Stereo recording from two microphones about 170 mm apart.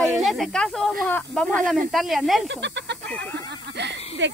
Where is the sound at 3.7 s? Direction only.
90° right.